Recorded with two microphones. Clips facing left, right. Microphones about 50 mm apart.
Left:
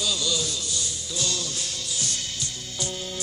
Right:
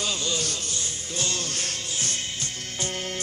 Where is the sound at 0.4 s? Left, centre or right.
Right.